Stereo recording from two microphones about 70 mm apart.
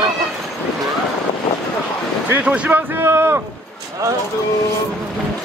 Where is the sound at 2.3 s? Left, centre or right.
Centre.